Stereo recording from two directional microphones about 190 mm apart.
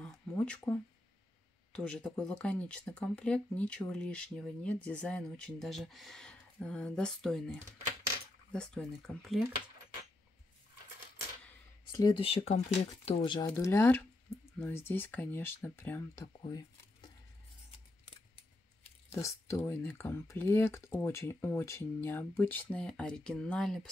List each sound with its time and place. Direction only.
0.0 s a sound: 5° left (ahead or behind)
1.7 s speech: 5° left (ahead or behind)
11.9 s speech: 25° left (ahead or behind)
19.1 s speech: 15° left (ahead or behind)